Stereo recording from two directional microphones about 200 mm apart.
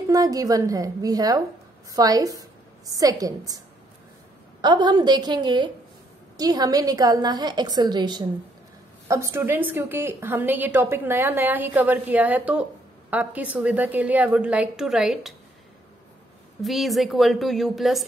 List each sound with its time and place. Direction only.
0.1 s a woman's voice: 20° right (ahead or behind)
4.6 s a woman's voice: 20° right (ahead or behind); by 15.3 s 5° right (ahead or behind)
16.6 s a woman's voice: centre (ahead or behind)